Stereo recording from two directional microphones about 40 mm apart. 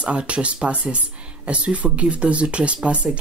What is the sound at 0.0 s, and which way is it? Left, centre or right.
Speech, right.